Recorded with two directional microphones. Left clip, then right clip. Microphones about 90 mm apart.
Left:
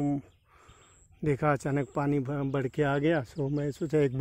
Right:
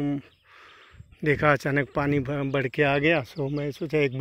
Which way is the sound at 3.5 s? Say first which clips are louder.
Even; 60° left (ahead or behind).